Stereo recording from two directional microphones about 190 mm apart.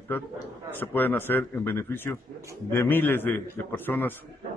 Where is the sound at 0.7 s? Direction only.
10° left (ahead or behind).